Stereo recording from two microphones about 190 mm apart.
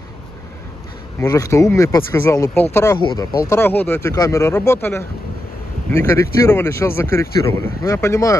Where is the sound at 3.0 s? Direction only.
25° left (ahead or behind).